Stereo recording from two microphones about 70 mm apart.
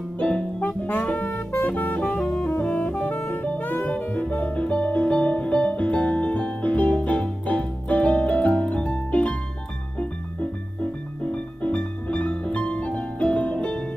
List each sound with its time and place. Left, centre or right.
0.2 s music: centre
11.3 s music: centre